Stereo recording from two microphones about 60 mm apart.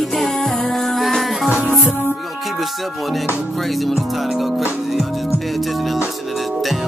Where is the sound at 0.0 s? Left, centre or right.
Centre.